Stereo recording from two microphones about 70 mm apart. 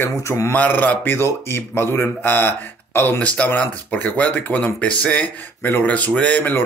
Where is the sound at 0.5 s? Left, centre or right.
Left.